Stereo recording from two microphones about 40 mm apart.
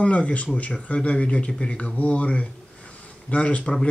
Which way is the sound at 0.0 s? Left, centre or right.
Left.